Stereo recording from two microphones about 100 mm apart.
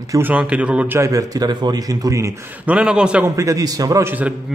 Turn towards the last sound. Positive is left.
turn(degrees=-20)  # may be behind; listen again after turning